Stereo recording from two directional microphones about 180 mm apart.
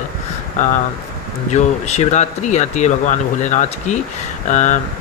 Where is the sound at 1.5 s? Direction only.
40° left (ahead or behind).